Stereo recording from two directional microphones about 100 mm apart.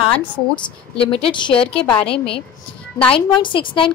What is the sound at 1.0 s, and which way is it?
Speech, 60° left (ahead or behind).